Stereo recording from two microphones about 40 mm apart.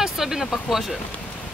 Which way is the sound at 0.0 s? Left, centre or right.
Centre.